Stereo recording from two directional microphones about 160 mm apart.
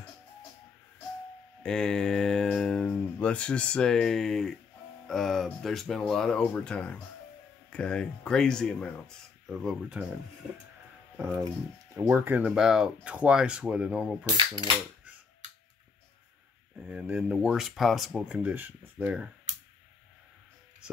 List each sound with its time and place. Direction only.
1.6 s speech: 5° left (ahead or behind)
12.0 s speech: 10° right (ahead or behind)
14.2 s cap gun: 25° right (ahead or behind)
16.9 s speech: 5° right (ahead or behind)